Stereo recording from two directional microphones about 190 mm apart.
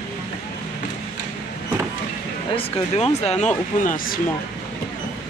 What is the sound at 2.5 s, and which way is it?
Speech, 35° left (ahead or behind).